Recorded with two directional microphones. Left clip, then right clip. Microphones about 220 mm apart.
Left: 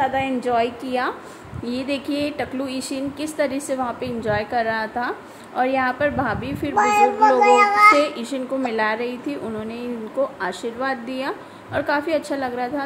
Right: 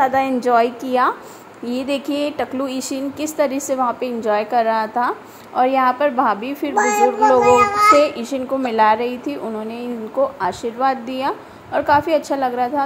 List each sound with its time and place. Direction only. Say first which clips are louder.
0.0 s a woman's voice: right 5 dB; 15° right (ahead or behind)
6.7 s a child's voice: right 1 dB; 5° left (ahead or behind)
7.9 s a woman's voice: right 5 dB; 10° right (ahead or behind)
10.4 s a woman's voice: right 6 dB; 10° right (ahead or behind)